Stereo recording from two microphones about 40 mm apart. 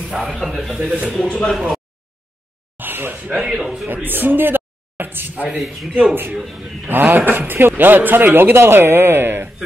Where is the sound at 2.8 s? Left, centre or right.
Right.